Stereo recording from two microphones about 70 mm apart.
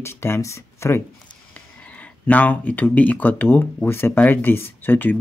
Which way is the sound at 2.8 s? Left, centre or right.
Left.